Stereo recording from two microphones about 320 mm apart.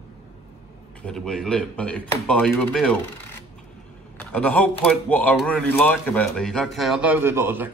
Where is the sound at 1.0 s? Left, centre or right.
Centre.